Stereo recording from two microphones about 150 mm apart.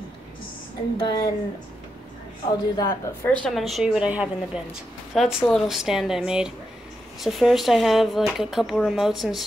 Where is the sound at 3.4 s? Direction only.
Centre (ahead or behind).